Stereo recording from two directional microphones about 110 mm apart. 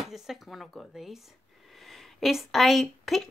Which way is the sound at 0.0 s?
5° right (ahead or behind).